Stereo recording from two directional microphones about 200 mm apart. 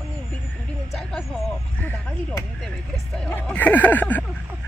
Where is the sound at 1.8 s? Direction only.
10° left (ahead or behind).